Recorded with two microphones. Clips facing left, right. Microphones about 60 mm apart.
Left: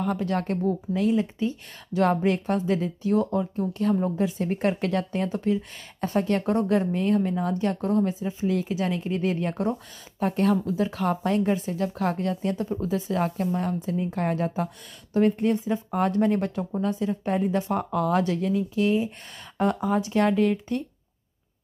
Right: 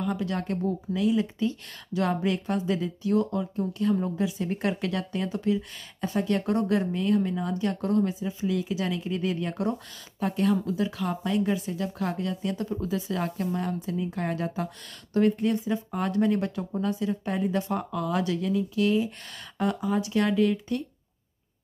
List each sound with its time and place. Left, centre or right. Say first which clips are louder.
0.0 s speech: left 3 dB; left
6.4 s speech: left 2 dB; left
11.1 s speech: left 4 dB; left
12.5 s speech: left 2 dB; left
12.8 s speech: left 5 dB; left
19.6 s speech: left 3 dB; left